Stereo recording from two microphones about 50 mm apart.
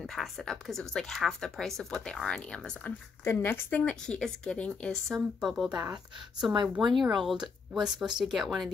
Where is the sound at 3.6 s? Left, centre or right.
Left.